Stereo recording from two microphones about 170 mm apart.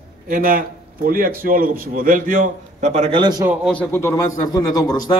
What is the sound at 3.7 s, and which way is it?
A man's voice, 10° left (ahead or behind).